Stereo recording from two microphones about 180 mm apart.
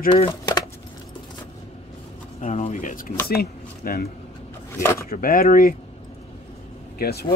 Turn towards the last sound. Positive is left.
turn(degrees=60)  # may be behind; listen again after turning